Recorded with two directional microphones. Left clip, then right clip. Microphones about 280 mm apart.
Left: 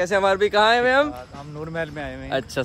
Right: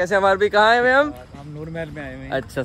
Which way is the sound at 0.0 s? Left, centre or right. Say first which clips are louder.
Right 2 dB; centre.